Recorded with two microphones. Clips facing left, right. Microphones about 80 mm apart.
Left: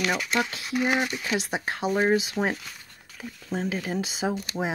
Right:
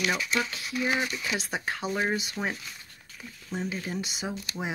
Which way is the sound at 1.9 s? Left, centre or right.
Left.